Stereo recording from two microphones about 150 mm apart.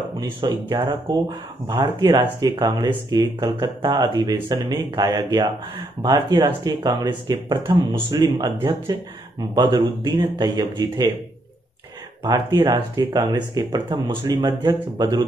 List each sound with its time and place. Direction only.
0.2 s speech: 30° right (ahead or behind)
9.6 s speech: 30° right (ahead or behind)
12.2 s speech: 25° right (ahead or behind)